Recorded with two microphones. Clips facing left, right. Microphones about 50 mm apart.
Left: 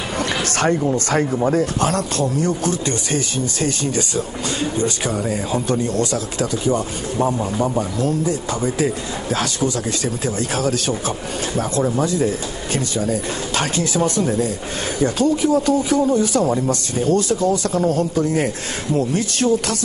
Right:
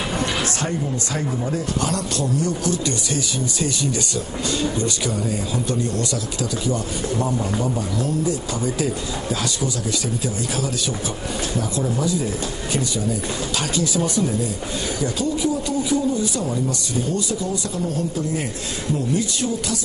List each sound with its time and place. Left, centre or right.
0.2 s speech: left
4.1 s speech: left
10.0 s speech: left